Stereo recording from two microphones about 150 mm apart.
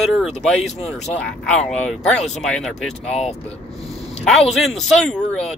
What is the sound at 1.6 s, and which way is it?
Speech, 5° left (ahead or behind).